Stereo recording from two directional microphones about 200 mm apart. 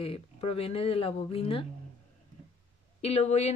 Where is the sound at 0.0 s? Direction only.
30° left (ahead or behind).